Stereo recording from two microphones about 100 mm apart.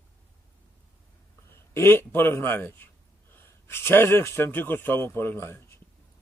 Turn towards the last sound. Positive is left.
turn(degrees=25)  # may be behind; listen again after turning